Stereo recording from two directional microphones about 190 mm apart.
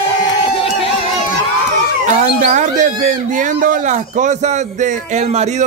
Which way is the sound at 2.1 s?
40° right (ahead or behind).